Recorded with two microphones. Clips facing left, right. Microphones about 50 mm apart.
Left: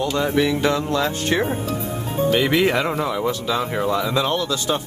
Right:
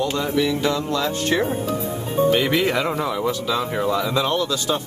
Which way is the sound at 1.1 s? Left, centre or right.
Centre.